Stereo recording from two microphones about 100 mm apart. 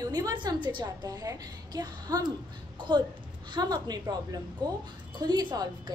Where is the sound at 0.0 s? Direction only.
40° right (ahead or behind).